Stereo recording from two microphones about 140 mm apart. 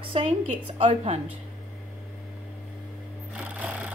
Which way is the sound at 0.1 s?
40° right (ahead or behind).